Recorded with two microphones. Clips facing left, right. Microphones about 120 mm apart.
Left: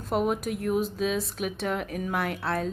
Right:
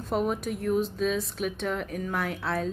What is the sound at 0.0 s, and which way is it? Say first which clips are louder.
Speech: left 1 dB; 5° left (ahead or behind).